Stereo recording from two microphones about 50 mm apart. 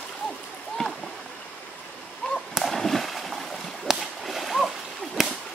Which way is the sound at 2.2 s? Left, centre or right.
Centre.